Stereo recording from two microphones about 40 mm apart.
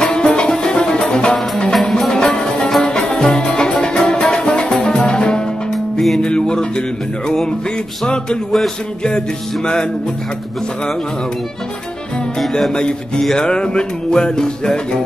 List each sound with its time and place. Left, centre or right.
0.0 s music: centre
1.7 s music: centre
5.7 s music: centre
6.2 s music: left
8.1 s music: centre
12.7 s music: left